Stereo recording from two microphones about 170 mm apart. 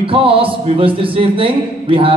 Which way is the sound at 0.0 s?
30° right (ahead or behind).